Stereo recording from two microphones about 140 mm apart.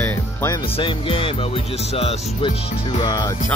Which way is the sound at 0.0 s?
20° left (ahead or behind).